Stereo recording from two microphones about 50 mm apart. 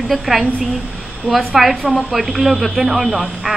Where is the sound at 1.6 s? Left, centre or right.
Centre.